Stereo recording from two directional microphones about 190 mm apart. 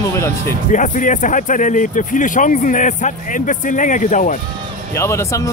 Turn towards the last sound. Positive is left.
turn(degrees=15)  # may be behind; listen again after turning